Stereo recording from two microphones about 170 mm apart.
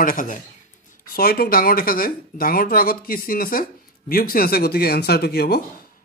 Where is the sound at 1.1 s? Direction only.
60° left (ahead or behind).